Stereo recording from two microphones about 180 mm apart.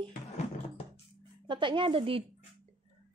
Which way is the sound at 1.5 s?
25° right (ahead or behind).